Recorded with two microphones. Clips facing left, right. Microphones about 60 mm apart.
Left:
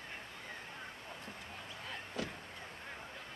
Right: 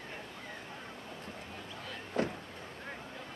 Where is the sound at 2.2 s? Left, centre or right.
Right.